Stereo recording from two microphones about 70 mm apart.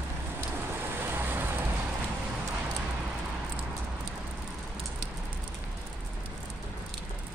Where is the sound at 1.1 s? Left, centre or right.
Right.